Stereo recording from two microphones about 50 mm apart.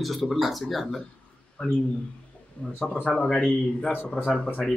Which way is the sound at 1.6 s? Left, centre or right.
Centre.